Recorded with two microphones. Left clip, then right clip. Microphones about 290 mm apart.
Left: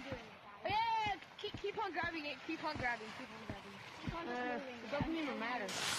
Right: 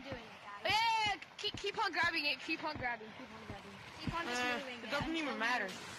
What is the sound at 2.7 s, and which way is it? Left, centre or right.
Speech, centre.